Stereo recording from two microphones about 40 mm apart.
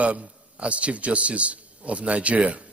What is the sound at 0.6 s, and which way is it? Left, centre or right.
A man's voice, right.